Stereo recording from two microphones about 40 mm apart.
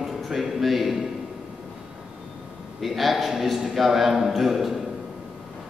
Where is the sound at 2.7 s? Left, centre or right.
Centre.